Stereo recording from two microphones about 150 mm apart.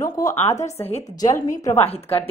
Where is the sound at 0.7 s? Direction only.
45° left (ahead or behind).